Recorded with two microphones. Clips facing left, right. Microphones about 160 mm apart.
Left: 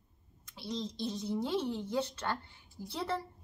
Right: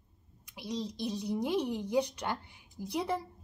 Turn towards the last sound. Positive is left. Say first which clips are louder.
# right 3 dB
turn(degrees=-15)  # may be behind; listen again after turning